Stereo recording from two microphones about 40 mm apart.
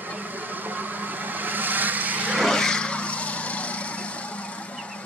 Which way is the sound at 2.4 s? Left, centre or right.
Centre.